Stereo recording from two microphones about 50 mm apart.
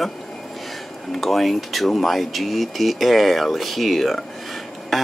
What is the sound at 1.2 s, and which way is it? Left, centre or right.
Speech, centre.